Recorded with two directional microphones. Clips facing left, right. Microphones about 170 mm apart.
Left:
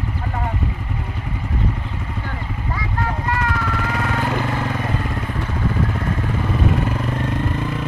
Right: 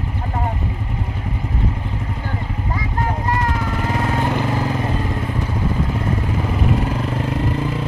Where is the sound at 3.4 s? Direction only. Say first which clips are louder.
Right 1 dB; 25° right (ahead or behind).